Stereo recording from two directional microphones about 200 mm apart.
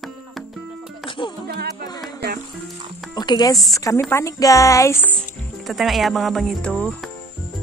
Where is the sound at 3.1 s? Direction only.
20° left (ahead or behind).